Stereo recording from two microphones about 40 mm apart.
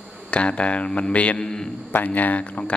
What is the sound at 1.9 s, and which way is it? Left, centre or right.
Speech, left.